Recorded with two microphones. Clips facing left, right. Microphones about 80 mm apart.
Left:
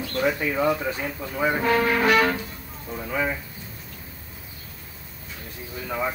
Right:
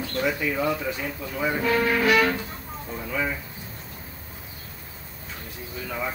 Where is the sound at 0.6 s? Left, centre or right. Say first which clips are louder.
Left 3 dB; centre; by 2.3 s left.